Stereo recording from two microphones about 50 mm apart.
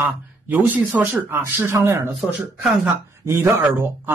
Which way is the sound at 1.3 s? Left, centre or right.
Right.